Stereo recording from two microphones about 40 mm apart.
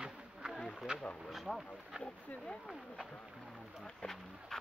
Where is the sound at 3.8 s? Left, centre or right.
Centre.